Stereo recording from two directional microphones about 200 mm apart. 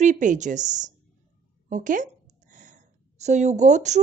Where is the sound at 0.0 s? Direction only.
40° right (ahead or behind).